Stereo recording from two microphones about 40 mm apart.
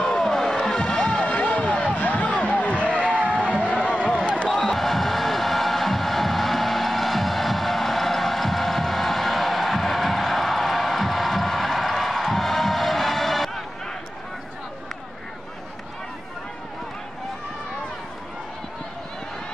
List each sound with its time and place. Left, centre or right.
0.2 s music: centre
1.2 s a sound: left
2.0 s music: left
3.7 s music: left
4.6 s music: centre